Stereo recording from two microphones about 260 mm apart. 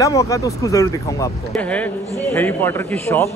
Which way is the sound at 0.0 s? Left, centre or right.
Centre.